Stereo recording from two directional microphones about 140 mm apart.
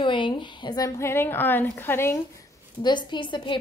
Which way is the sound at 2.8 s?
35° left (ahead or behind).